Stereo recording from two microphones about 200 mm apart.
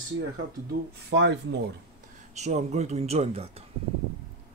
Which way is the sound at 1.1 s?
60° right (ahead or behind).